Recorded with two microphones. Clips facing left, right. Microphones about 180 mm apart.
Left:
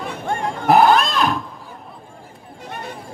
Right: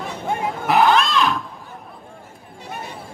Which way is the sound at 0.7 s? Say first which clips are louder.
Left 3 dB; 40° left (ahead or behind).